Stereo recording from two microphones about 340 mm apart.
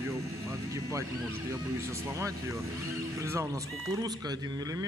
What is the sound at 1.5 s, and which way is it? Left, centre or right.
Speech, centre.